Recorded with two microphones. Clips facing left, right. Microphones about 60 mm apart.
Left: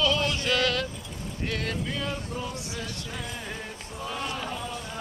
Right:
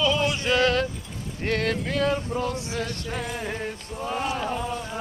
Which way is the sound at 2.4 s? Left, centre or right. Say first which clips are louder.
Right 7 dB; right.